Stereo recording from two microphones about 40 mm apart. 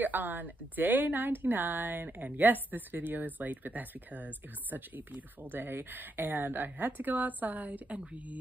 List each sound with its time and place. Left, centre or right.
0.0 s a woman's voice: right
5.6 s a woman's voice: right
7.0 s a woman's voice: right